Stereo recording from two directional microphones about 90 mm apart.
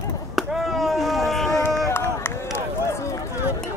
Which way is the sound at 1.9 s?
25° left (ahead or behind).